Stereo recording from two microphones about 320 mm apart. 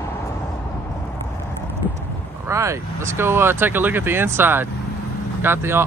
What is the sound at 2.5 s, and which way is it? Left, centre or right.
Speech, centre.